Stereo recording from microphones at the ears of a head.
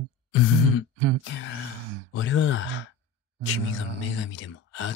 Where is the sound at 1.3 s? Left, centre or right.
Left.